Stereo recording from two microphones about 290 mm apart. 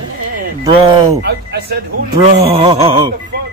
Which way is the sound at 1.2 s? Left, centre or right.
Right.